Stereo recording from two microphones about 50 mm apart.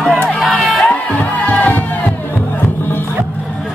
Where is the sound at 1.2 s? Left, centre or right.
Left.